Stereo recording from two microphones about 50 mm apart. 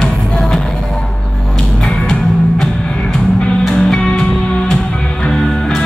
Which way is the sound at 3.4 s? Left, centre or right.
Centre.